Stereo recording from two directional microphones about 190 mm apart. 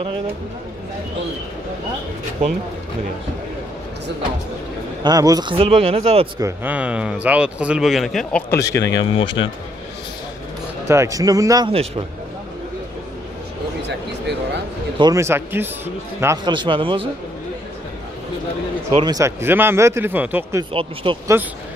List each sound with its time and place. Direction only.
5.0 s speech: 20° right (ahead or behind)
6.4 s speech: 10° right (ahead or behind); by 9.5 s 25° left (ahead or behind)
10.9 s speech: 15° right (ahead or behind)
13.8 s a sound: 65° right (ahead or behind)
15.0 s speech: 20° right (ahead or behind)
18.9 s speech: 20° right (ahead or behind)
20.7 s speech: 25° right (ahead or behind)